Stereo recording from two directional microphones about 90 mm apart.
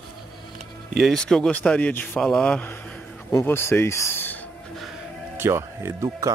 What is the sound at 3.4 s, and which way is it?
Speech, 25° left (ahead or behind).